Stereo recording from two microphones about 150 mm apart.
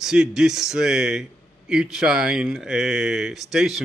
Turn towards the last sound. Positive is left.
turn(degrees=0)  # may be behind; listen again after turning